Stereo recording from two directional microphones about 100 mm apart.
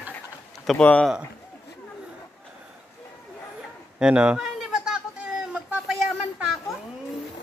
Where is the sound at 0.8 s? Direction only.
10° left (ahead or behind).